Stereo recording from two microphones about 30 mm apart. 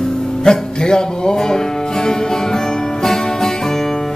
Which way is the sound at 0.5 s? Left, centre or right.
Left.